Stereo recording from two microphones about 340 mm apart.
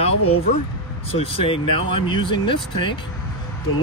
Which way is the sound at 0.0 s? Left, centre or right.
Centre.